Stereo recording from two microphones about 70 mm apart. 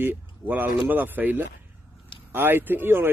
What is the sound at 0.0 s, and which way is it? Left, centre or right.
A man's voice, right.